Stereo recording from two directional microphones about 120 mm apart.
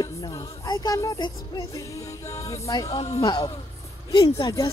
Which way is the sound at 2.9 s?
60° left (ahead or behind).